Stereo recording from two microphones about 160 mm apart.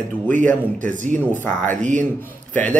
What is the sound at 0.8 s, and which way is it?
Speech, 50° right (ahead or behind).